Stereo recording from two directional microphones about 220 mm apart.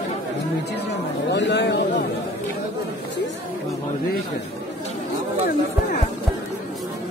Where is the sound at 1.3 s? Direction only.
50° left (ahead or behind).